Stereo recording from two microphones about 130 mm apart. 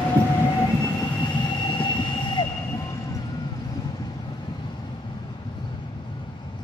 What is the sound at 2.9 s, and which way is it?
Vehicle, 25° left (ahead or behind).